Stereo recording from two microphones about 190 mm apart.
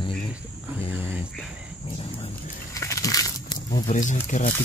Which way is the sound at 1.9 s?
30° left (ahead or behind).